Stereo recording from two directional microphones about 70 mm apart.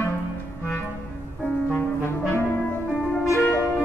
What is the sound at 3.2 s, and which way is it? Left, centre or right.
Music, left.